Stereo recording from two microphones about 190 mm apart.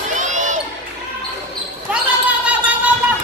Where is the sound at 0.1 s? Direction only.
40° right (ahead or behind).